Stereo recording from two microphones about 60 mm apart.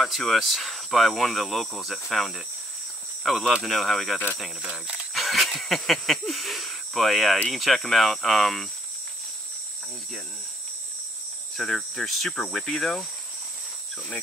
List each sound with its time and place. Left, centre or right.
0.0 s speech: centre
4.6 s speech: centre
5.1 s speech: centre
11.5 s speech: centre